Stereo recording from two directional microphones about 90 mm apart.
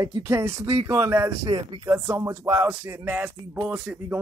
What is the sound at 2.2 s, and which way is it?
Speech, 35° right (ahead or behind).